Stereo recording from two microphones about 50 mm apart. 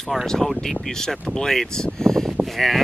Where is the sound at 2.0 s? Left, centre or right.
Centre.